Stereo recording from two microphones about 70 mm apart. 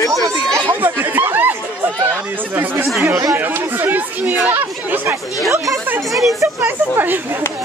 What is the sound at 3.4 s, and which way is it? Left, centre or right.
Chatter, right.